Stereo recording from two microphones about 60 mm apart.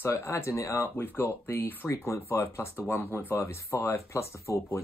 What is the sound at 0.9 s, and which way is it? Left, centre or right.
Speech, left.